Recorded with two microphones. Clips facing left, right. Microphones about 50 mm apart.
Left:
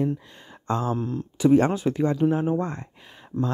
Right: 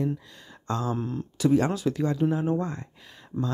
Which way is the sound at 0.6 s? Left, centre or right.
Left.